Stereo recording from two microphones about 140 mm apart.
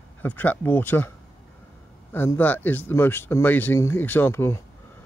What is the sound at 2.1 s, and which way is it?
Speech, 15° left (ahead or behind).